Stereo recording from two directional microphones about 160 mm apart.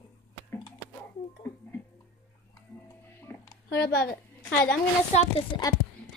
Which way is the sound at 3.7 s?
85° left.